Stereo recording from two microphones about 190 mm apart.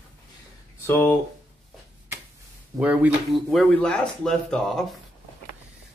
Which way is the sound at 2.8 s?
5° right (ahead or behind).